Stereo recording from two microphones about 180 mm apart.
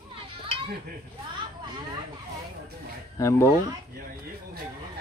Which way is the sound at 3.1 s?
15° left (ahead or behind).